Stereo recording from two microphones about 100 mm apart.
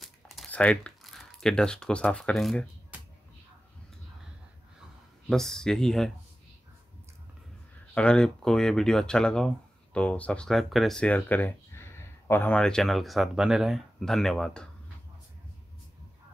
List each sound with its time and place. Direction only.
0.0 s crumpling: centre (ahead or behind)
0.5 s speech: 10° left (ahead or behind)
2.9 s music: 15° right (ahead or behind)
5.3 s speech: 5° left (ahead or behind)
7.9 s speech: 10° left (ahead or behind)
11.0 s a sound: 15° left (ahead or behind)
12.5 s speech: 5° left (ahead or behind)